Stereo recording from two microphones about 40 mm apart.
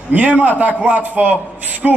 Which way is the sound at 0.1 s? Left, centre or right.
Right.